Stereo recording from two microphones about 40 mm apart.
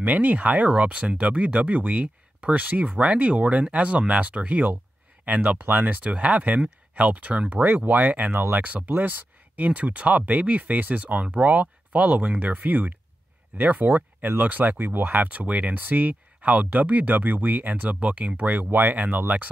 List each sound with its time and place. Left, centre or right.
0.0 s speech: right
3.0 s speech: right
6.0 s speech: right
7.6 s speech: right
8.3 s speech: right
8.5 s speech: right
15.8 s speech: right